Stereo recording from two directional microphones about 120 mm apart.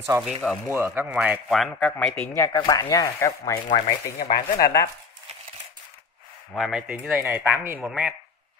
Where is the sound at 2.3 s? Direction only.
30° left (ahead or behind).